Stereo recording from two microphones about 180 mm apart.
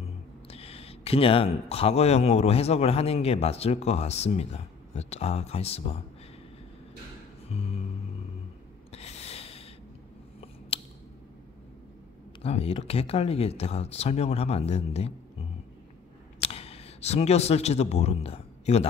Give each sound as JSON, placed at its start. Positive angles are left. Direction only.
{"t": 0.5, "sound": "speech", "side_deg": 35}
{"t": 7.4, "sound": "music", "side_deg": 35}
{"t": 8.9, "sound": "a sound", "side_deg": 35}
{"t": 10.7, "sound": "a sound", "side_deg": 30}
{"t": 12.4, "sound": "speech", "side_deg": 35}
{"t": 16.4, "sound": "speech", "side_deg": 35}